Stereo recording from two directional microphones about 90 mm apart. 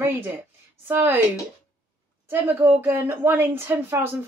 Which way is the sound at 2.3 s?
25° right (ahead or behind).